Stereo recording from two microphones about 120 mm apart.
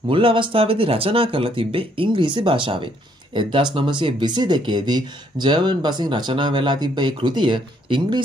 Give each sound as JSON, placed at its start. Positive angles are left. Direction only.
{"t": 0.1, "sound": "speech", "side_deg": -45}